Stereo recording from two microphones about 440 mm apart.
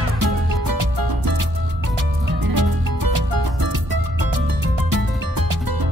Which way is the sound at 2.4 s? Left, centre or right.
Right.